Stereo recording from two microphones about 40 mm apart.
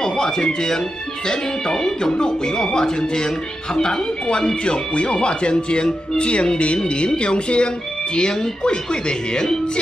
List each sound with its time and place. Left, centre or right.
0.0 s speech: centre